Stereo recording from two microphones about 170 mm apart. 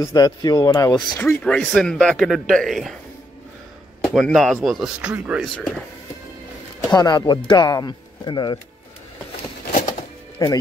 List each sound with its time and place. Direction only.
0.0 s speech: 25° left (ahead or behind)
1.2 s speech: 5° left (ahead or behind)
4.0 s speech: centre (ahead or behind)
6.9 s speech: 25° left (ahead or behind)
9.8 s music: 45° left (ahead or behind)
10.4 s speech: 20° left (ahead or behind)